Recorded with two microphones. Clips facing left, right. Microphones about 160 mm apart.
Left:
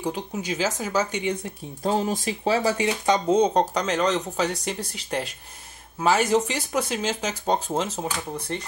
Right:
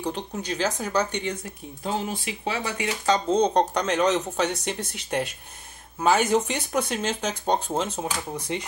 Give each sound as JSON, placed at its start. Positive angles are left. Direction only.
{"t": 0.0, "sound": "speech", "side_deg": 5}
{"t": 1.8, "sound": "speech", "side_deg": 40}
{"t": 3.1, "sound": "speech", "side_deg": 10}